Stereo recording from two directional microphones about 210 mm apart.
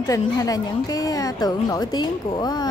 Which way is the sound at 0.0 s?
15° left (ahead or behind).